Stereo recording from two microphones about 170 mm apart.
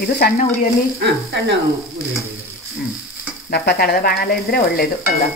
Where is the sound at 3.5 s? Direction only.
65° left (ahead or behind).